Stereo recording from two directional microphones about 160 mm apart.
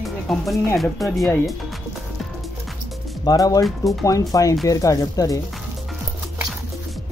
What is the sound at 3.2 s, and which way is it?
Speech, 25° left (ahead or behind).